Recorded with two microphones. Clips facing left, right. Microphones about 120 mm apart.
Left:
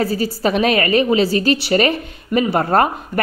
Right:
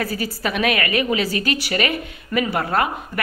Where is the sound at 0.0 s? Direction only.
30° left (ahead or behind).